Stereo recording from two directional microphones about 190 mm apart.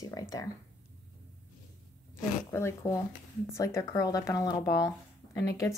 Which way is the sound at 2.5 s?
15° left (ahead or behind).